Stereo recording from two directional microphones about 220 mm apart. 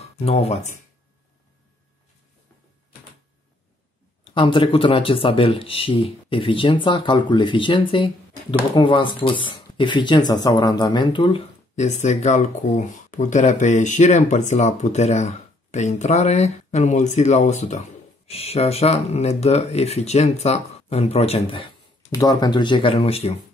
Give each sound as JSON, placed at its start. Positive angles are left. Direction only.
{"t": 0.0, "sound": "speech", "side_deg": 30}
{"t": 4.2, "sound": "speech", "side_deg": 20}